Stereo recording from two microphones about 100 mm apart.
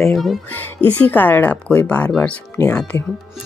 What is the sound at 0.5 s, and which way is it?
Speech, 20° left (ahead or behind).